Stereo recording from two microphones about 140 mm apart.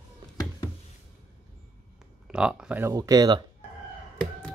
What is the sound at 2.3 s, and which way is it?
Speech, 5° right (ahead or behind).